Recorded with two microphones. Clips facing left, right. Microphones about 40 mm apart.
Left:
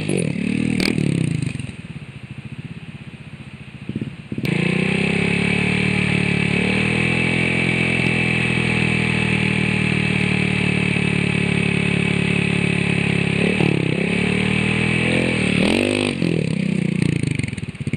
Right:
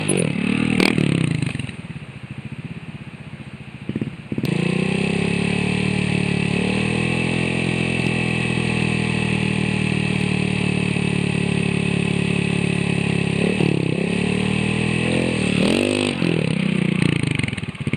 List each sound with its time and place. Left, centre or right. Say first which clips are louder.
0.0 s vehicle: right 1 dB; right
4.5 s vehicle: left 2 dB; left
15.5 s vehicle: even; centre
16.2 s vehicle: even; right